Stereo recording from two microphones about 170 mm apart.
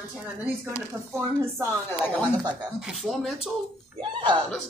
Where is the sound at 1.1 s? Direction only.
15° right (ahead or behind).